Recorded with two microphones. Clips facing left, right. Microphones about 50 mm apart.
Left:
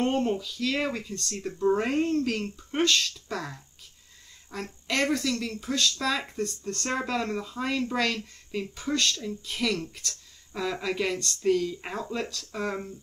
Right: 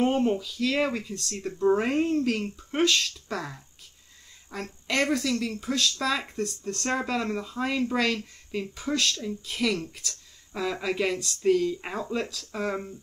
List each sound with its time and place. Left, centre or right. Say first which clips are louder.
0.0 s speech: right 2 dB; centre